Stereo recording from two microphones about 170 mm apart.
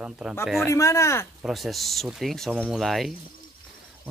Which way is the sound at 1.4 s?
Centre (ahead or behind).